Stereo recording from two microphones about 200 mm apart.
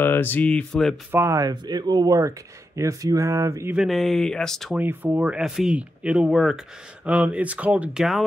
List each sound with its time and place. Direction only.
0.0 s speech: 10° left (ahead or behind)
1.1 s speech: 15° right (ahead or behind)
3.7 s speech: centre (ahead or behind)
4.7 s speech: 10° right (ahead or behind)